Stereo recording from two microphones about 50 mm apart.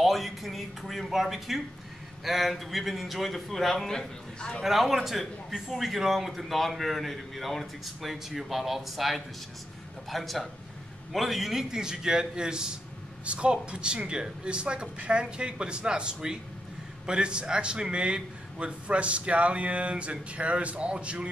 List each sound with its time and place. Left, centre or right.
0.0 s a man's voice: centre
4.6 s a man's voice: centre; by 21.3 s right